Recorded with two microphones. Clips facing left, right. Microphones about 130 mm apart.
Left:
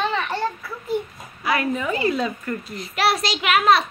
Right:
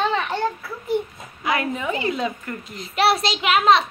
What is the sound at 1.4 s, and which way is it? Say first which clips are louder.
A woman's voice: left 1 dB; 20° right (ahead or behind).